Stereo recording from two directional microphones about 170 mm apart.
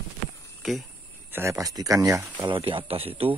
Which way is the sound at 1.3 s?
15° right (ahead or behind).